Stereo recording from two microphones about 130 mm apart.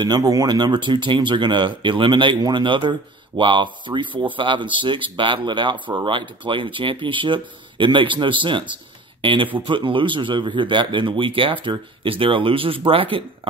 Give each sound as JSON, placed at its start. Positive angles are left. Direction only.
{"t": 0.0, "sound": "speech", "side_deg": -30}